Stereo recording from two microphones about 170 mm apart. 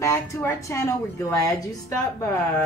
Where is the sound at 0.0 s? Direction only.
15° left (ahead or behind).